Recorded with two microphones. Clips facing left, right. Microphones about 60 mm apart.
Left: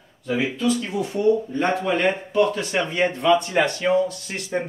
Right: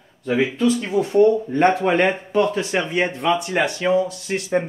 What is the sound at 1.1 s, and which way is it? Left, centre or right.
Speech, right.